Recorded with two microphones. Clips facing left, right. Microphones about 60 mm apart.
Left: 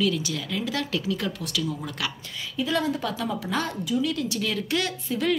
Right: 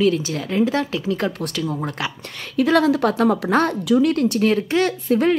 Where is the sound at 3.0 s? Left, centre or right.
Right.